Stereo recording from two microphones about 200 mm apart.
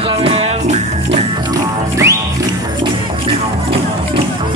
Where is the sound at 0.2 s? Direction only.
30° right (ahead or behind).